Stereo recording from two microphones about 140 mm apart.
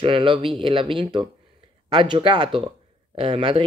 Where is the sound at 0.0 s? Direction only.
40° right (ahead or behind).